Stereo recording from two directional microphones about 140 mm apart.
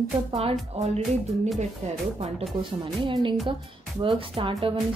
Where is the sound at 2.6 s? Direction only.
35° right (ahead or behind).